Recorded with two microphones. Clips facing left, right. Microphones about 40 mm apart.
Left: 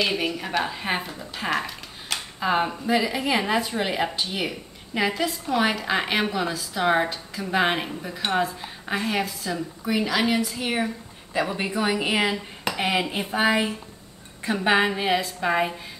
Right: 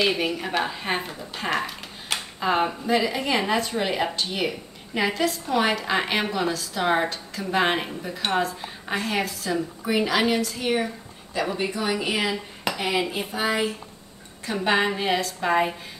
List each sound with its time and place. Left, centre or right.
0.0 s a woman's voice: centre
2.1 s a sound: centre
2.4 s a woman's voice: centre
10.3 s a woman's voice: centre